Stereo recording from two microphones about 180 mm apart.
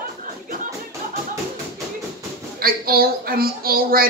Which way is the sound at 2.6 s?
55° right (ahead or behind).